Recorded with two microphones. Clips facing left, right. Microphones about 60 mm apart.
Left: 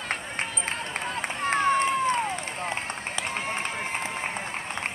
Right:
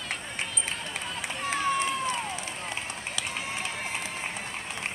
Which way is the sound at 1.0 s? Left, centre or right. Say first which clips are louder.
Left 5 dB; left.